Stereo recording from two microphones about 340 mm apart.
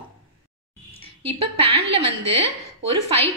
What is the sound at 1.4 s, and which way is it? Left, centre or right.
Speech, centre.